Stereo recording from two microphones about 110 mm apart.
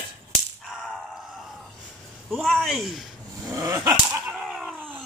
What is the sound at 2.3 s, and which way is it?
Speech, centre (ahead or behind).